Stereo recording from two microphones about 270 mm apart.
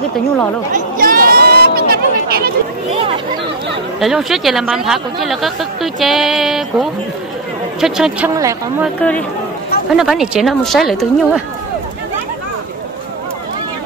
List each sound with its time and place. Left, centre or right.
0.7 s a sound: right
4.0 s speech: centre
9.9 s speech: centre